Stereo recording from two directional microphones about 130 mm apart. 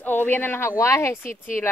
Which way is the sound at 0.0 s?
15° left (ahead or behind).